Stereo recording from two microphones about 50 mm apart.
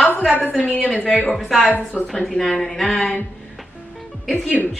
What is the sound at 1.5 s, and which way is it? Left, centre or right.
Speech, centre.